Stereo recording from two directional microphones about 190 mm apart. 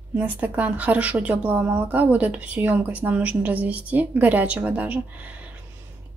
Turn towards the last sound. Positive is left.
turn(degrees=-10)  # may be behind; listen again after turning